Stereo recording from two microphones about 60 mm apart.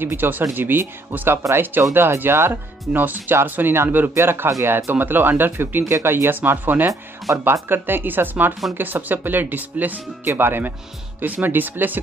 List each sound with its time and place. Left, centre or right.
0.0 s speech: right
1.8 s speech: right